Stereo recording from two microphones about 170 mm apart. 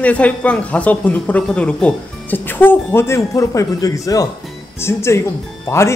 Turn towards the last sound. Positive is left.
turn(degrees=15)  # may be behind; listen again after turning